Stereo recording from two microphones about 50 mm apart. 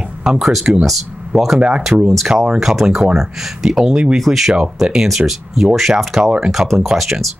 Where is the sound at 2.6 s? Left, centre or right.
Centre.